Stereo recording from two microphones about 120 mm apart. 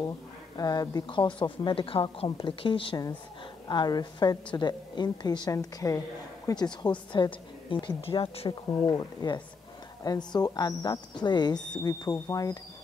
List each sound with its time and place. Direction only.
0.6 s a woman's voice: 30° left (ahead or behind); by 3.0 s 50° left (ahead or behind)
3.6 s a woman's voice: 35° left (ahead or behind)